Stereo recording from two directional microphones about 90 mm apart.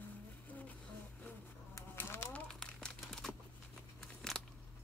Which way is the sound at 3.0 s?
5° left (ahead or behind).